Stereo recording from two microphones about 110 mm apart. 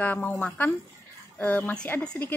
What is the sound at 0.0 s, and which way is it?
A woman's voice, 15° left (ahead or behind).